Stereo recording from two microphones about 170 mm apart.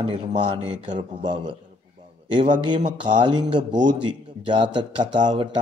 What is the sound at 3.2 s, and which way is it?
A man's voice, 30° right (ahead or behind).